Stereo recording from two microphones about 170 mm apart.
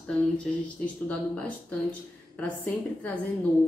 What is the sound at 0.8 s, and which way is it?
Speech, 5° left (ahead or behind).